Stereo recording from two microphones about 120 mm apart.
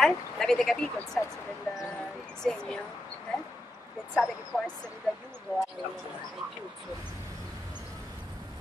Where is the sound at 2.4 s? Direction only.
5° left (ahead or behind).